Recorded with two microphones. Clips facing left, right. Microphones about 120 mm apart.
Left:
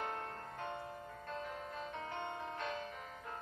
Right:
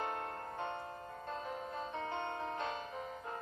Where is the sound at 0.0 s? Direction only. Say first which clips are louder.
Right 3 dB; 25° right (ahead or behind).